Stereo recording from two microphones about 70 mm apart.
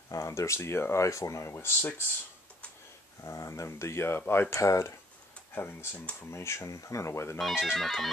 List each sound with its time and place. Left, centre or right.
0.1 s speech: left
3.3 s speech: left
5.5 s speech: left
7.5 s music: centre